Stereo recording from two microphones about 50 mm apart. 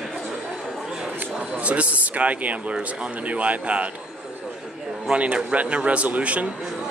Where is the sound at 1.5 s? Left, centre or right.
Right.